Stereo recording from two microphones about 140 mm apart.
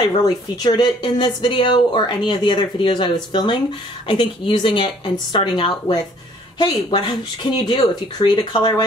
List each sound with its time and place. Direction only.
0.2 s speech: 30° left (ahead or behind)